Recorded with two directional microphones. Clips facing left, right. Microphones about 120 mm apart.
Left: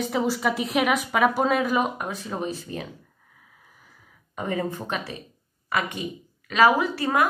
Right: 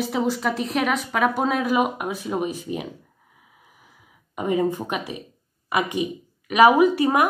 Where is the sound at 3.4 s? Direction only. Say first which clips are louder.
Right 1 dB; 10° right (ahead or behind).